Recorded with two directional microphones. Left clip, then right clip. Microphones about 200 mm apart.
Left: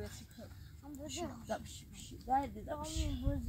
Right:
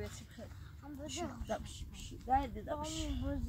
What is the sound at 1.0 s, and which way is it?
Speech, 10° left (ahead or behind).